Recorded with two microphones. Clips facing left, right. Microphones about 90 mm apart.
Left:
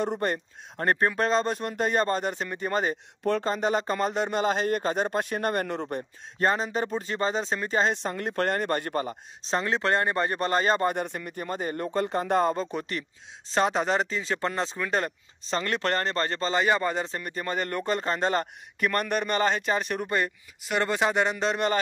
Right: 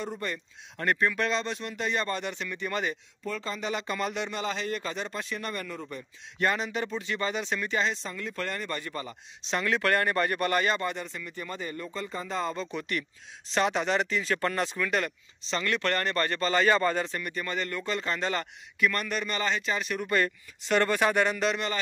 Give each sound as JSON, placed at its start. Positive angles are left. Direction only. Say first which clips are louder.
{"t": 0.0, "sound": "speech", "louder": "left 7 dB", "side_deg": 55}
{"t": 0.7, "sound": "speech", "louder": "left 2 dB", "side_deg": 40}
{"t": 3.3, "sound": "speech", "louder": "left 8 dB", "side_deg": 50}
{"t": 6.3, "sound": "speech", "louder": "left 3 dB", "side_deg": 35}
{"t": 7.9, "sound": "speech", "louder": "left 6 dB", "side_deg": 55}
{"t": 11.0, "sound": "speech", "louder": "left 6 dB", "side_deg": 55}
{"t": 17.0, "sound": "speech", "louder": "left 1 dB", "side_deg": 35}
{"t": 20.6, "sound": "speech", "louder": "right 1 dB", "side_deg": 15}